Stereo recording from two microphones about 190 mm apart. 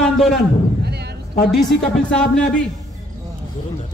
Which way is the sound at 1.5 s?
Centre (ahead or behind).